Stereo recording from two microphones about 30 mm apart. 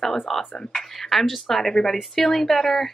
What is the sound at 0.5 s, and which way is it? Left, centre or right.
Speech, left.